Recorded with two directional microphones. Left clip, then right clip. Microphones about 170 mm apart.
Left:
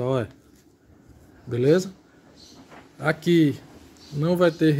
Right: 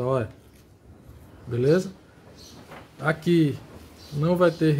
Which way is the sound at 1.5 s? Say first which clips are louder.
Left 2 dB; 40° left (ahead or behind).